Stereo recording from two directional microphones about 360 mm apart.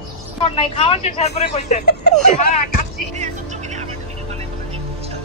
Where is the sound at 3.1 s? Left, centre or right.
Centre.